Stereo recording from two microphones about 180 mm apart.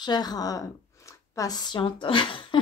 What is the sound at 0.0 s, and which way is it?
A woman's voice, 25° left (ahead or behind).